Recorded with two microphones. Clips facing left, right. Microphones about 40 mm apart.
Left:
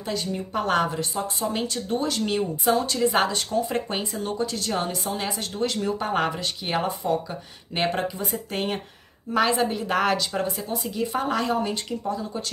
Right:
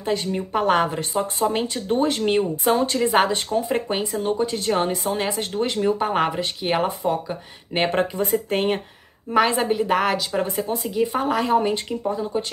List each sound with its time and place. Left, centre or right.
0.0 s speech: right
0.5 s speech: centre
0.8 s speech: right
8.2 s speech: right
9.3 s a woman's voice: right
11.5 s speech: right